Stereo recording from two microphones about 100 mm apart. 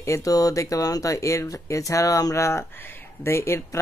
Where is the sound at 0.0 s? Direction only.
35° left (ahead or behind).